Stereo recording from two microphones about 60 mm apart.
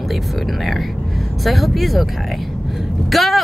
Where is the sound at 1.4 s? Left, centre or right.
Centre.